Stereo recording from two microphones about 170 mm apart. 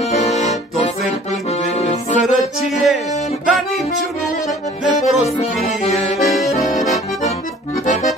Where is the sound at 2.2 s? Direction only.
Centre (ahead or behind).